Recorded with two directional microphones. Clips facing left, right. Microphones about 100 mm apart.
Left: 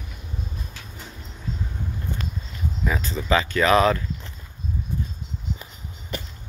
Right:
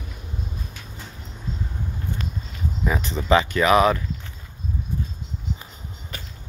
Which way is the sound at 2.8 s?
25° right (ahead or behind).